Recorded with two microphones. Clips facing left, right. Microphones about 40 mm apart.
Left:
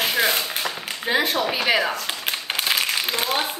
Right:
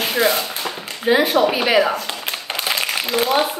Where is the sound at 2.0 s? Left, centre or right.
Centre.